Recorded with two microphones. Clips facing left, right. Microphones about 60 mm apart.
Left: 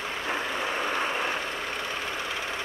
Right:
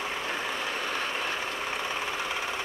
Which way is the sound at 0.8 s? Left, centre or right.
Left.